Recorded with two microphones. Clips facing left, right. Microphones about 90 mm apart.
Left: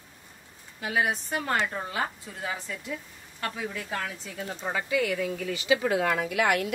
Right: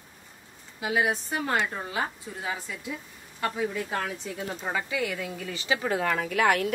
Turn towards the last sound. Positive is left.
turn(degrees=-45)  # may be behind; listen again after turning